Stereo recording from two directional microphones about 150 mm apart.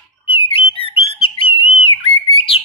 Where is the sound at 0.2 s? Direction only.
40° left (ahead or behind).